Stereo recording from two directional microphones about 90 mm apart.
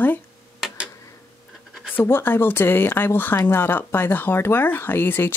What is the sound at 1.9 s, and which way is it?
Speech, 25° left (ahead or behind).